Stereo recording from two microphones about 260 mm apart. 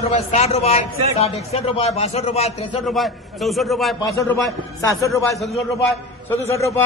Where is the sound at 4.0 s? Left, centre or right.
Centre.